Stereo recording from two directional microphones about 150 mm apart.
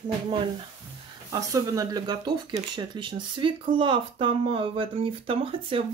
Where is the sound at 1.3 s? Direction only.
20° right (ahead or behind).